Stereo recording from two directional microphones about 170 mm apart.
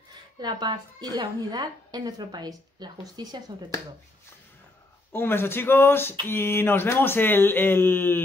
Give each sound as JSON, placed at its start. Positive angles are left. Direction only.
{"t": 0.4, "sound": "a woman's voice", "side_deg": -25}
{"t": 5.1, "sound": "speech", "side_deg": 15}